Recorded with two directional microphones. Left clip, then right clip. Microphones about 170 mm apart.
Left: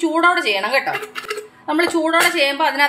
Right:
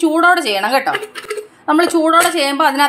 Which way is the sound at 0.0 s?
40° right (ahead or behind).